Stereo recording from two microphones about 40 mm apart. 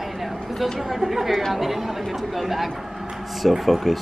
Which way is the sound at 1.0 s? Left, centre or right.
Centre.